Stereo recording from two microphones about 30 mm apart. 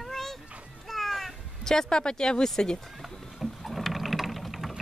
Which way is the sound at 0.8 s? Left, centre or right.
Centre.